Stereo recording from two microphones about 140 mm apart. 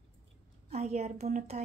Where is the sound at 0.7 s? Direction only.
50° right (ahead or behind).